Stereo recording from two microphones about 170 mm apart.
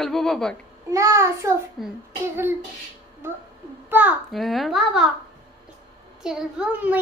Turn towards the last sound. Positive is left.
turn(degrees=-10)  # may be behind; listen again after turning